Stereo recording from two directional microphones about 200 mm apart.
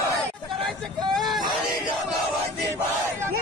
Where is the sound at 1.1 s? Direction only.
Centre (ahead or behind).